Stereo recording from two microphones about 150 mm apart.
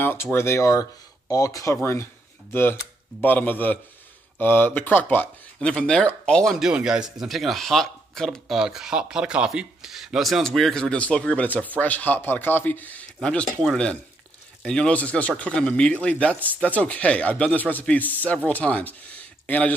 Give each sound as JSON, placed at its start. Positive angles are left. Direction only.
{"t": 0.0, "sound": "a man's voice", "side_deg": 15}